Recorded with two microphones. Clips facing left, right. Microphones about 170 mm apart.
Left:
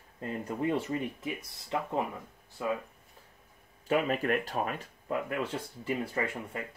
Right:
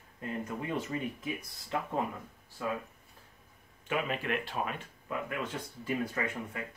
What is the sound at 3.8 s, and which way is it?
Speech, 40° left (ahead or behind).